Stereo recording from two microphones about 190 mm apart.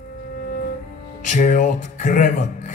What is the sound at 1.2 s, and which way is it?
A man's voice, 40° left (ahead or behind).